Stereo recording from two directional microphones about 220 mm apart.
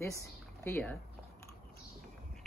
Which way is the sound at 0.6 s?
10° left (ahead or behind).